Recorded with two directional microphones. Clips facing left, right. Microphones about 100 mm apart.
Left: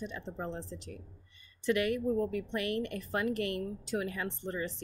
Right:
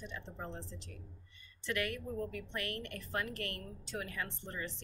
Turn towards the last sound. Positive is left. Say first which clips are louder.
# left 7 dB
turn(degrees=15)  # may be behind; listen again after turning